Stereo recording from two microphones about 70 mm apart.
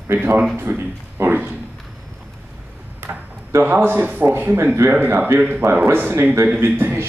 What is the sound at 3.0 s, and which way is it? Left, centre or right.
Speech, right.